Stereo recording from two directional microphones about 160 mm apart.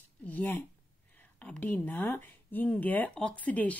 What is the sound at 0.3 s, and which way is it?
Speech, 10° left (ahead or behind).